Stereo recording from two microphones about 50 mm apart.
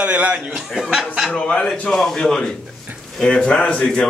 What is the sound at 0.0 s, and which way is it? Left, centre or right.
Speech, right.